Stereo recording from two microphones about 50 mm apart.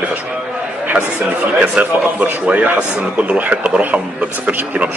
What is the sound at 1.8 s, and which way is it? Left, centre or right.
A man's voice, right.